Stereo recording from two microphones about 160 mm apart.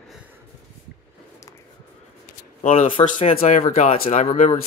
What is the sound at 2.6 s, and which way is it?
Speech, 50° left (ahead or behind).